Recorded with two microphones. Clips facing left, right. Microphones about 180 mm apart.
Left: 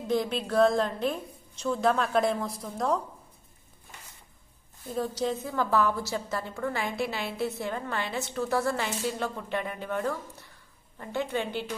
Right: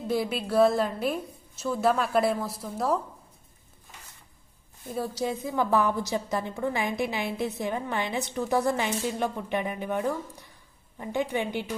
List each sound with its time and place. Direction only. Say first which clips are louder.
0.0 s a woman's voice: even; 5° right (ahead or behind)
4.9 s a woman's voice: even; 10° right (ahead or behind)